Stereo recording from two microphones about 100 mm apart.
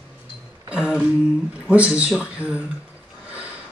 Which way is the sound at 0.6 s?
10° right (ahead or behind).